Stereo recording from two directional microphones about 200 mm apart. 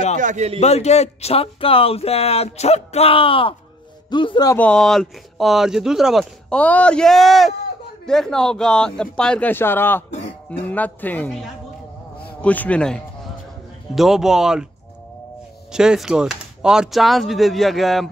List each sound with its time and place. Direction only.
0.2 s speech: 35° right (ahead or behind)
0.6 s a man's voice: 35° left (ahead or behind)
4.6 s speech: 5° left (ahead or behind)
15.7 s speech: 5° right (ahead or behind)